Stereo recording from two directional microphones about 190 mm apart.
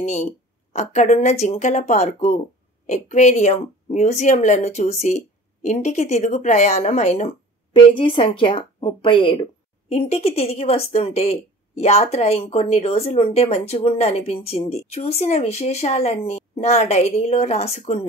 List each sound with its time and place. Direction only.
0.0 s a woman's voice: 40° left (ahead or behind)